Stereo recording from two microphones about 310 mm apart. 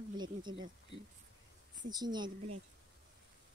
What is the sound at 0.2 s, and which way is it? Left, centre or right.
Speech, centre.